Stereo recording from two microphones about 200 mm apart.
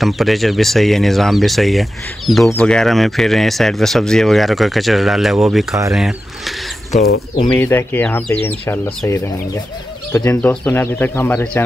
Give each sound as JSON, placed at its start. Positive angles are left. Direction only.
{"t": 0.0, "sound": "speech", "side_deg": 0}
{"t": 6.9, "sound": "speech", "side_deg": 40}
{"t": 7.5, "sound": "speech", "side_deg": 10}